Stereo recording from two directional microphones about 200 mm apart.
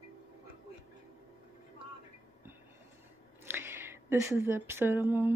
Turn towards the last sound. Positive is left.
turn(degrees=-10)  # may be behind; listen again after turning